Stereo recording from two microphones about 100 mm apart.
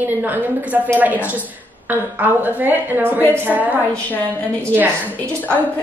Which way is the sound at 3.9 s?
20° left (ahead or behind).